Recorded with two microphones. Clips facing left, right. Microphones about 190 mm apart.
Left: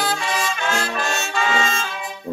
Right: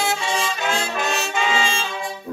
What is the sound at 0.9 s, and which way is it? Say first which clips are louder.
Trumpet: right 1 dB; 20° right (ahead or behind).